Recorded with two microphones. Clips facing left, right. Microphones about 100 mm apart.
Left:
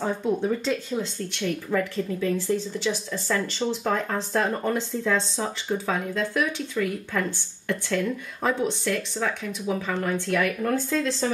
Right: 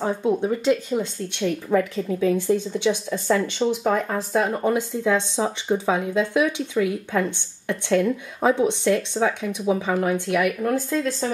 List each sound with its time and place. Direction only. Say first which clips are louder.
0.0 s a woman's voice: right 3 dB; 15° right (ahead or behind)